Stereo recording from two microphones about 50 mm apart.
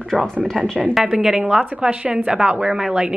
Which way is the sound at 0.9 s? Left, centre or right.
Centre.